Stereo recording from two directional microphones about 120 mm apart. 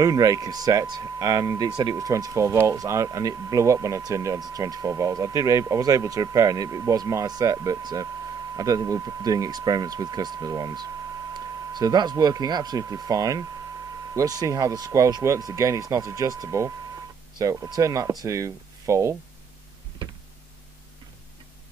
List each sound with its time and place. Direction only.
0.0 s speech: 30° right (ahead or behind)